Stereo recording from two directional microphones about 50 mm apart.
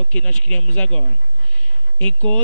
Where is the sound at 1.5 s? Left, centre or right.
Left.